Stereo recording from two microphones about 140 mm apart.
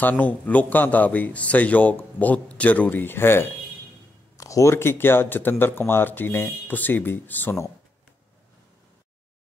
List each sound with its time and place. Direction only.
0.0 s speech: 10° left (ahead or behind)